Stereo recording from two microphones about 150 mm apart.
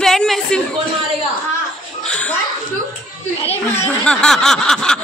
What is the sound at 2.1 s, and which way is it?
Speech, 10° left (ahead or behind).